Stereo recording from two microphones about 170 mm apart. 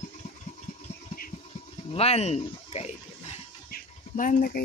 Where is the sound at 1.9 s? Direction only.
35° left (ahead or behind).